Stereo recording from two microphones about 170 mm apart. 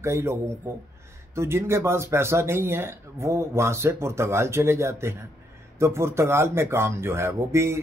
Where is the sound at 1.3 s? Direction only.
15° right (ahead or behind).